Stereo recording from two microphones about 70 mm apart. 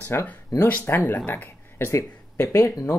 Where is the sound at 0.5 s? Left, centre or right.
Left.